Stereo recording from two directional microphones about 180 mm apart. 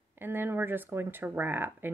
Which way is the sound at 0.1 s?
10° right (ahead or behind).